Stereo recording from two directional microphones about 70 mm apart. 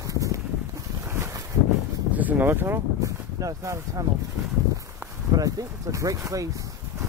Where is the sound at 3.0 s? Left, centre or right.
Right.